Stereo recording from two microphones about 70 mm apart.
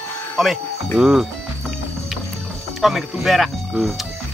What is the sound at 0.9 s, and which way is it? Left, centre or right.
Speech, centre.